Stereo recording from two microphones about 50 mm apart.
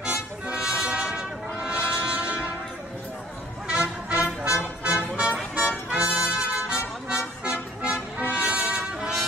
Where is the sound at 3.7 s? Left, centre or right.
Right.